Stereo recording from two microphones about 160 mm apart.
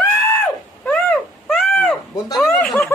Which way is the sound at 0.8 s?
5° left (ahead or behind).